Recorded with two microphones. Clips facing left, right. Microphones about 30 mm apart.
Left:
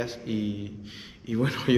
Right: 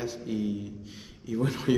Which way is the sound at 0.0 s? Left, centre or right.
Left.